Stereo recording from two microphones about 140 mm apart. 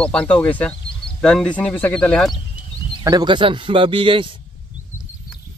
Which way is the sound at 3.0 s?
30° right (ahead or behind).